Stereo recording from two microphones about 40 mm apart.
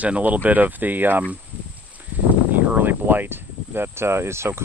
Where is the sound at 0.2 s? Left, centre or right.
Right.